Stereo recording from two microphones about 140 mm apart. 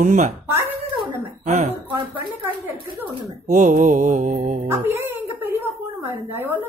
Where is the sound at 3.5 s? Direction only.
60° right (ahead or behind).